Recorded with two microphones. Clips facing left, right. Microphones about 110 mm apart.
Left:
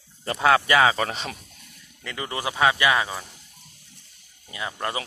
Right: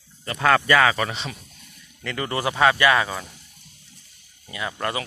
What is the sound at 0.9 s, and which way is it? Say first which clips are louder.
Speech: even; 40° left (ahead or behind).